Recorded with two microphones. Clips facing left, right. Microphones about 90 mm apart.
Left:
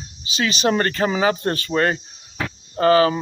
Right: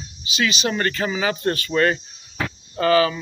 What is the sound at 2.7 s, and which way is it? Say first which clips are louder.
Speech: left 2 dB; 35° left (ahead or behind).